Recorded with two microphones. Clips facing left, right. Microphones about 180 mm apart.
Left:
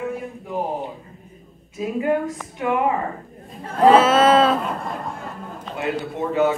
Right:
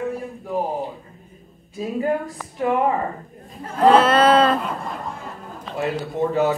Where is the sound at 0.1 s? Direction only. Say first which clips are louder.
Right 2 dB; centre (ahead or behind).